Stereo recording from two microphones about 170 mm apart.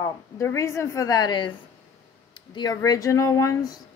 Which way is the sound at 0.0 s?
15° left (ahead or behind).